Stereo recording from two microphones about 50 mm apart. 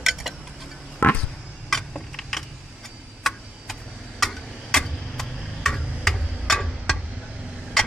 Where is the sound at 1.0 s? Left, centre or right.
Left.